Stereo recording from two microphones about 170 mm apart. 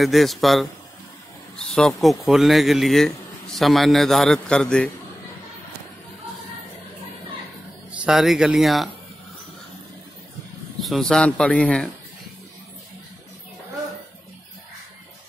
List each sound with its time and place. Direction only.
0.0 s a man's voice: centre (ahead or behind)
1.7 s a man's voice: centre (ahead or behind)
8.0 s a man's voice: centre (ahead or behind)
10.8 s a man's voice: centre (ahead or behind)